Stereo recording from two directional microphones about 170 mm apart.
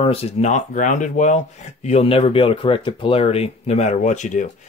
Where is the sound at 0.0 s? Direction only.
35° left (ahead or behind).